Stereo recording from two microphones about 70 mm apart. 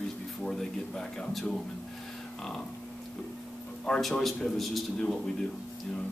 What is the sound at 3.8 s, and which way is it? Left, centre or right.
A man's voice, centre.